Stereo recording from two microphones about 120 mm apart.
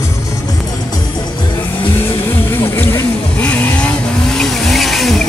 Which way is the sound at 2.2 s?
20° left (ahead or behind).